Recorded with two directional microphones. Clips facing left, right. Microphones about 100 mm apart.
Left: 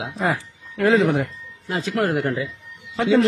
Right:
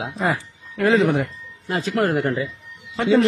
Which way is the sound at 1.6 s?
45° right (ahead or behind).